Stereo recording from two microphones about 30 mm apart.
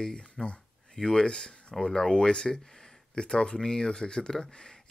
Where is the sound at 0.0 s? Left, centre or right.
Left.